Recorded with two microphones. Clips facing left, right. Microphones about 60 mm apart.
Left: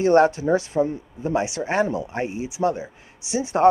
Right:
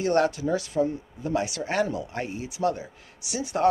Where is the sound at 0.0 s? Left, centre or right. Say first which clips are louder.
Left 6 dB; left.